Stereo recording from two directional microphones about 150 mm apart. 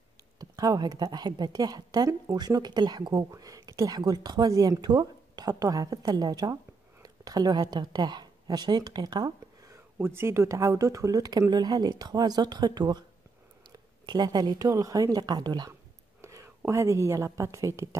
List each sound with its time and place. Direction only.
0.4 s a woman's voice: 25° right (ahead or behind)
9.9 s a woman's voice: 15° right (ahead or behind)